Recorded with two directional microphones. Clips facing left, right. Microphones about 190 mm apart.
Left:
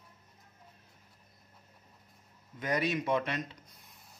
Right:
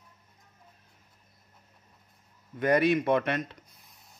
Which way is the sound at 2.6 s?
60° right (ahead or behind).